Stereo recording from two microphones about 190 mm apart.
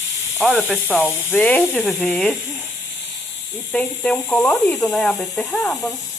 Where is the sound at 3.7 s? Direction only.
5° left (ahead or behind).